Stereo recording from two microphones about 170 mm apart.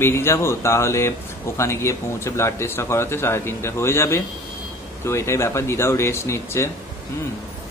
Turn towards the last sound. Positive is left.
turn(degrees=15)  # may be behind; listen again after turning